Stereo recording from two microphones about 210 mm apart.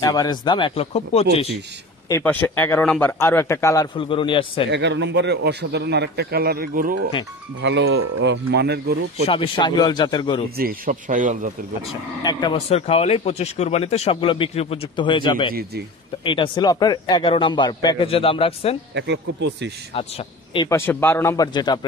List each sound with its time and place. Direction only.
0.0 s speech: 20° left (ahead or behind)
2.0 s speech: 10° left (ahead or behind)
4.6 s speech: 55° right (ahead or behind)
7.6 s speech: 60° right (ahead or behind)
9.3 s speech: 25° left (ahead or behind)
10.6 s a man's voice: 40° right (ahead or behind)
11.9 s speech: 20° left (ahead or behind)
18.9 s speech: 55° right (ahead or behind)
19.9 s speech: 25° left (ahead or behind)
20.6 s speech: 10° left (ahead or behind)